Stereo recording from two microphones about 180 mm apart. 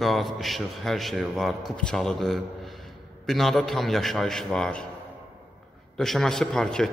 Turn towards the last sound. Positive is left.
turn(degrees=5)  # may be behind; listen again after turning